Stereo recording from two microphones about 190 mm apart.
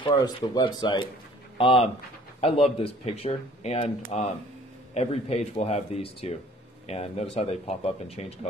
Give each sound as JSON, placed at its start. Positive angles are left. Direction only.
{"t": 0.0, "sound": "speech", "side_deg": 20}